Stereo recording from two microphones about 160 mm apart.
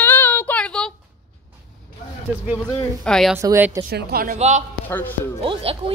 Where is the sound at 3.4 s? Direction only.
15° right (ahead or behind).